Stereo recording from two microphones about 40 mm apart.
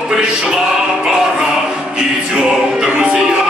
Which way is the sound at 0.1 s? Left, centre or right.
Centre.